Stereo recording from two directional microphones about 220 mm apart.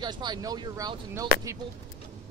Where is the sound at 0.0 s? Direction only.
20° right (ahead or behind).